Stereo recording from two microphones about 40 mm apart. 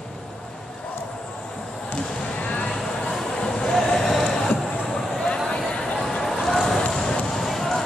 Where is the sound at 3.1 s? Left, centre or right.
Centre.